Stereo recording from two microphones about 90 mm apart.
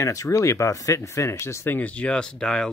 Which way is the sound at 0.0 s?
40° left (ahead or behind).